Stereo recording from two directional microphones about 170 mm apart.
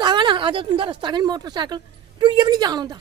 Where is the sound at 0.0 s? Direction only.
25° right (ahead or behind).